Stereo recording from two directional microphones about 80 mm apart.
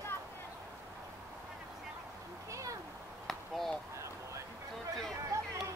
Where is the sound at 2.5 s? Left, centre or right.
Right.